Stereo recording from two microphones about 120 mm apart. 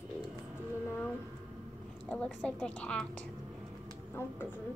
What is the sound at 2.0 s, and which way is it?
A woman's voice, 10° left (ahead or behind).